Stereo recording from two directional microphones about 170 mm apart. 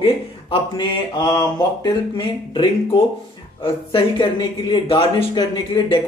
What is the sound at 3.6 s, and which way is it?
Speech, 30° left (ahead or behind).